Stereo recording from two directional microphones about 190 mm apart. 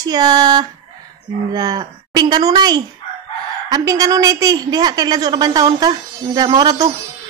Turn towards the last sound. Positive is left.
turn(degrees=-20)  # may be behind; listen again after turning